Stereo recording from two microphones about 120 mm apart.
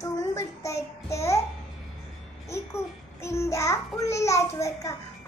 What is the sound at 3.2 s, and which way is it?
Child singing, 25° left (ahead or behind).